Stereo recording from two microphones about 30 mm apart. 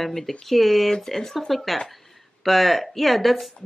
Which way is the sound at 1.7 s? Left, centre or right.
Centre.